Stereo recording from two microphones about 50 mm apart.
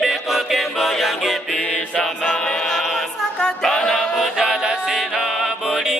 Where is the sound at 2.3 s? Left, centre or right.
Centre.